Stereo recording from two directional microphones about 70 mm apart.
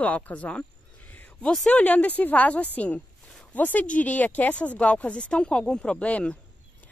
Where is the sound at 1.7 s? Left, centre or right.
Left.